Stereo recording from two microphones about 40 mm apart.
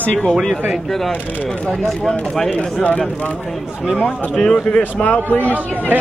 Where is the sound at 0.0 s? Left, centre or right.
Left.